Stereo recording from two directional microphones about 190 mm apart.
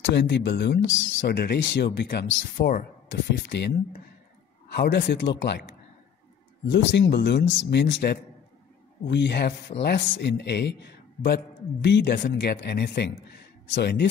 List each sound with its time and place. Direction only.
0.0 s a man's voice: 65° left (ahead or behind)
4.7 s speech: 50° left (ahead or behind)
5.4 s a man's voice: 60° left (ahead or behind)
6.7 s a man's voice: 65° left (ahead or behind)